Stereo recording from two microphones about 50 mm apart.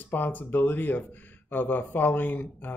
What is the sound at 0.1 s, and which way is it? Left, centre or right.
Speech, left.